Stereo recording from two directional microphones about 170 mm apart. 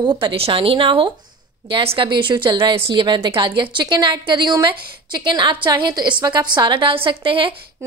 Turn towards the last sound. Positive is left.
turn(degrees=-30)  # may be behind; listen again after turning